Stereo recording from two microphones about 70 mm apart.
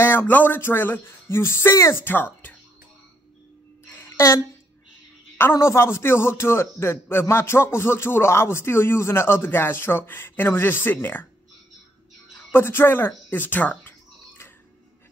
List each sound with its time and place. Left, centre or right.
0.0 s a man's voice: left
5.5 s a man's voice: left
12.4 s a sound: left